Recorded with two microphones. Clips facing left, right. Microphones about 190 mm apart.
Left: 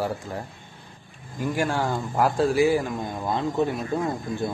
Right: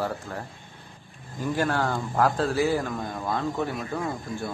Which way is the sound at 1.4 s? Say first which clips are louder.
Left 1 dB; 10° left (ahead or behind).